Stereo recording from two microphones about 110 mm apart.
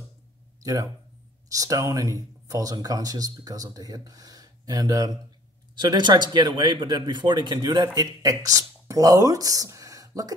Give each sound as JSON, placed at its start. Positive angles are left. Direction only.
{"t": 0.6, "sound": "speech", "side_deg": -30}